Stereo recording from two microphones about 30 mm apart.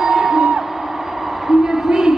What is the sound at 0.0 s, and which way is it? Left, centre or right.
Music, centre.